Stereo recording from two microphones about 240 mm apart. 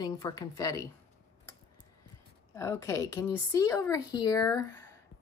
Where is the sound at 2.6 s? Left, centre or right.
Centre.